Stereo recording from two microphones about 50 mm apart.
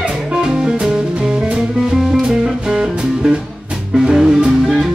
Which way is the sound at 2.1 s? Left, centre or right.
Centre.